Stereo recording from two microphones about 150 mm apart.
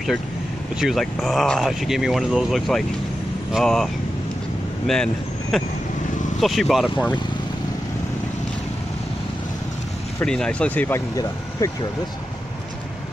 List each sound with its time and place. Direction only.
0.7 s speech: centre (ahead or behind)
10.2 s speech: 5° left (ahead or behind)